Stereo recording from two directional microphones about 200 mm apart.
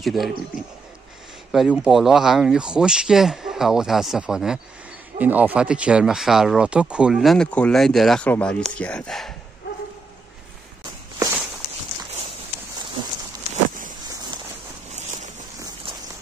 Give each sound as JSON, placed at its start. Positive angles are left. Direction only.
{"t": 0.0, "sound": "speech", "side_deg": 0}
{"t": 1.5, "sound": "speech", "side_deg": 0}
{"t": 14.9, "sound": "a sound", "side_deg": -35}